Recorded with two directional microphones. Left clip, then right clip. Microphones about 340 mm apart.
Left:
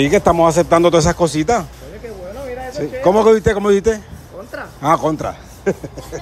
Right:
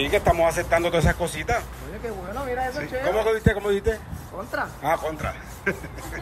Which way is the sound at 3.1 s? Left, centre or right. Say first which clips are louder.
Left 12 dB; centre.